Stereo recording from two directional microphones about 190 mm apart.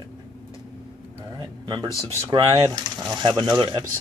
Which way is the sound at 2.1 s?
15° right (ahead or behind).